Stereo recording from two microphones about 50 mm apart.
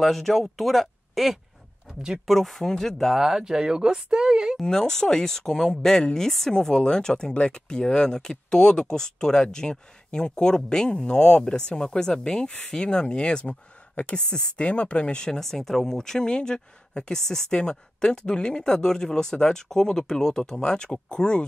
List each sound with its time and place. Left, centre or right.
0.0 s speech: centre
3.2 s speech: centre
4.6 s speech: centre